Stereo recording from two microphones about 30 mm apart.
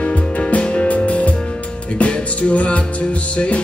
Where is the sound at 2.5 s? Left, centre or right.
Left.